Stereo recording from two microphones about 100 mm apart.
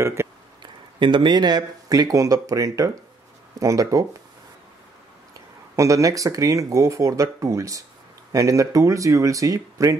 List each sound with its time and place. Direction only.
0.0 s a sound: 30° right (ahead or behind)
0.6 s speech: 50° right (ahead or behind); by 4.0 s 35° right (ahead or behind)
5.3 s speech: 30° right (ahead or behind)